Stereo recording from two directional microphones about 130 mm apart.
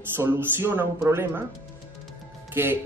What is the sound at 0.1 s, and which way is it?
A woman's voice, 15° right (ahead or behind).